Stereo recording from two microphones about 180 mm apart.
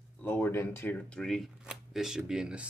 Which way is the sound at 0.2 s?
10° left (ahead or behind).